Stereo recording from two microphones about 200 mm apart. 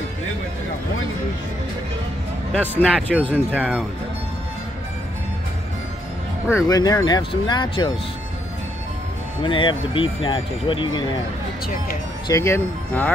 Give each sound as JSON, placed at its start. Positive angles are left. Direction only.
{"t": 2.5, "sound": "speech", "side_deg": 5}
{"t": 3.5, "sound": "speech", "side_deg": -5}
{"t": 6.5, "sound": "speech", "side_deg": 20}
{"t": 9.4, "sound": "speech", "side_deg": 25}
{"t": 12.3, "sound": "speech", "side_deg": 15}